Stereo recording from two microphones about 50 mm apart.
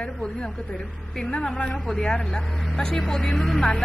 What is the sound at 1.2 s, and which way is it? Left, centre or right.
Speech, centre.